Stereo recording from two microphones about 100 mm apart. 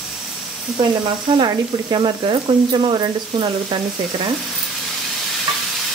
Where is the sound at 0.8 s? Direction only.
55° right (ahead or behind).